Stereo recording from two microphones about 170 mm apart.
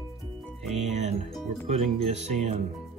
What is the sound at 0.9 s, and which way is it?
Music, 40° right (ahead or behind).